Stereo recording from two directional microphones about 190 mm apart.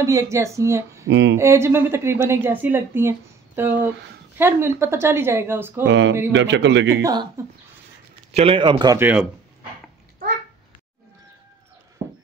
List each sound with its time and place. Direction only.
0.0 s speech: 15° right (ahead or behind)
1.0 s speech: 70° right (ahead or behind)
1.3 s speech: 15° right (ahead or behind)
5.9 s a man's voice: 70° right (ahead or behind)
7.0 s speech: 20° right (ahead or behind)
8.3 s a man's voice: 30° right (ahead or behind); by 9.3 s 10° right (ahead or behind)